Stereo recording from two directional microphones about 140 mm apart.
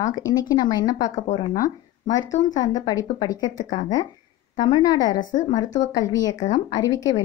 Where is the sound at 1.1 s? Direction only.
55° left (ahead or behind).